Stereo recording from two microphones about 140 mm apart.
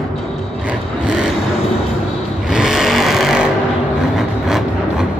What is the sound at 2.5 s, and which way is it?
Vehicle, 5° right (ahead or behind).